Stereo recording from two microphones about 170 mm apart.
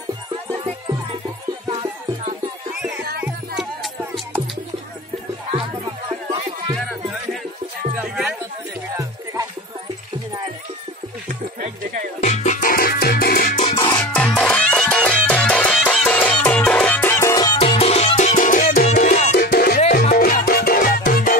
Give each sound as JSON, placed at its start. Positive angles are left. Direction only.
{"t": 1.7, "sound": "music", "side_deg": -30}
{"t": 3.2, "sound": "music", "side_deg": -5}
{"t": 8.0, "sound": "music", "side_deg": -5}
{"t": 8.9, "sound": "music", "side_deg": -20}
{"t": 11.2, "sound": "music", "side_deg": -50}
{"t": 12.2, "sound": "music", "side_deg": 45}
{"t": 13.6, "sound": "music", "side_deg": 35}
{"t": 14.0, "sound": "music", "side_deg": 5}
{"t": 17.6, "sound": "music", "side_deg": 35}
{"t": 19.3, "sound": "music", "side_deg": 70}